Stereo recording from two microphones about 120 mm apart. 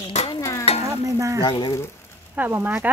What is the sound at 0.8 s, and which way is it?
Stir, 25° right (ahead or behind).